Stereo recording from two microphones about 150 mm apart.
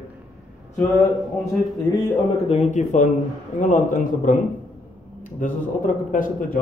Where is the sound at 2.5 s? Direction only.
50° left (ahead or behind).